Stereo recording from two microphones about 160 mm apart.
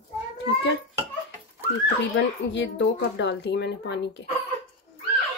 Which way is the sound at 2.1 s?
90° left.